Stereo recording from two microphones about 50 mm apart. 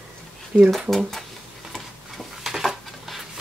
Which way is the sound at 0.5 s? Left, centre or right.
Centre.